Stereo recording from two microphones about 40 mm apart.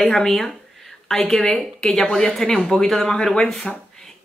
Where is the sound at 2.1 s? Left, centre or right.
Centre.